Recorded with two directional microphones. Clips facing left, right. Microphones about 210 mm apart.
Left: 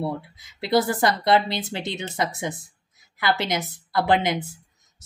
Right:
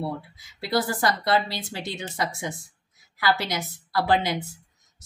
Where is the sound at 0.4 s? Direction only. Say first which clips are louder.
Left 5 dB; 20° left (ahead or behind).